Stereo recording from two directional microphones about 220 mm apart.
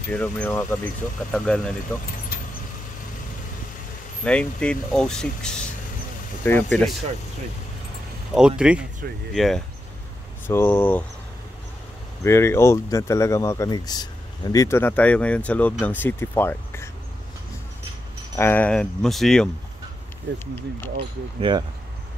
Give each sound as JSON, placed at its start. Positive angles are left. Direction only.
{"t": 0.1, "sound": "speech", "side_deg": 5}
{"t": 4.2, "sound": "speech", "side_deg": 5}
{"t": 8.4, "sound": "speech", "side_deg": -5}
{"t": 12.2, "sound": "speech", "side_deg": 10}
{"t": 18.3, "sound": "speech", "side_deg": 10}
{"t": 21.4, "sound": "speech", "side_deg": -20}